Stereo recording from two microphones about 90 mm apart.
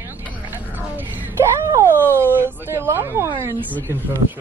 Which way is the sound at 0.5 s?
20° right (ahead or behind).